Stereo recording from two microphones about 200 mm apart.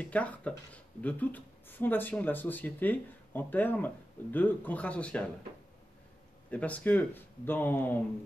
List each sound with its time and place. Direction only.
0.0 s speech: 5° left (ahead or behind)
6.5 s speech: 5° left (ahead or behind)